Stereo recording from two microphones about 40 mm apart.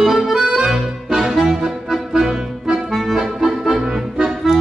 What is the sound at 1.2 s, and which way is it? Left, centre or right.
Music, centre.